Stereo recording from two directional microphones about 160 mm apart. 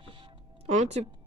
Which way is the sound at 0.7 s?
45° right (ahead or behind).